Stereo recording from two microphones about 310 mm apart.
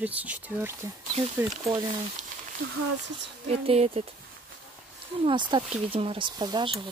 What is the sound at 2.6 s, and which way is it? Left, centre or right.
Speech, right.